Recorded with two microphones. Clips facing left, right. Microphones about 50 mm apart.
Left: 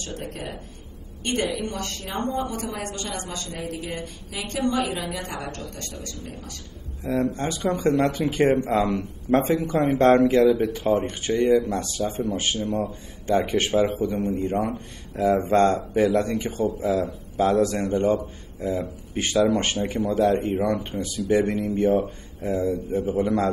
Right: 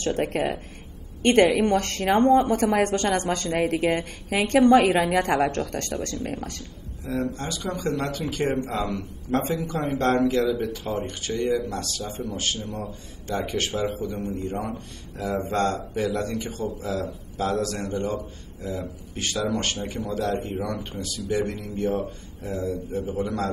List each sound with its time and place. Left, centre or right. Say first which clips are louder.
0.0 s a woman's voice: right 9 dB; right
7.1 s speech: left 4 dB; left